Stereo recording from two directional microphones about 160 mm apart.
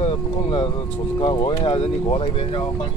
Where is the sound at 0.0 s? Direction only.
30° left (ahead or behind).